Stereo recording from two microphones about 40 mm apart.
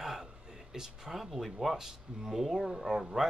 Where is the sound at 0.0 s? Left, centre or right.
Centre.